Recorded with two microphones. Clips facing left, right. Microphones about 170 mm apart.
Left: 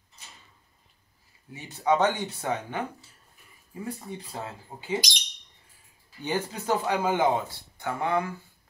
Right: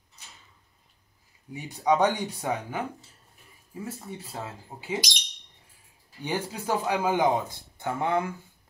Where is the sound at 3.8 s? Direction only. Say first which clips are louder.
Left 3 dB; 5° right (ahead or behind).